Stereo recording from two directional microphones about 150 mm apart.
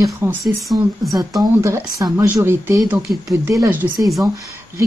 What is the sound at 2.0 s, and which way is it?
Speech, 20° right (ahead or behind).